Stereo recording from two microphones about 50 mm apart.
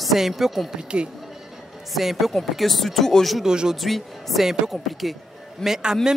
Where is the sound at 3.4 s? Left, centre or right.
Centre.